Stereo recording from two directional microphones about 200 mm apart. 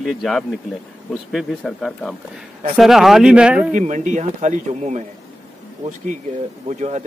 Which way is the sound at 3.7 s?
40° right (ahead or behind).